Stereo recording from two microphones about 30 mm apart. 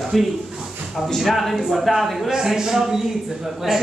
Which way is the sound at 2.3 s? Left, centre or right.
Centre.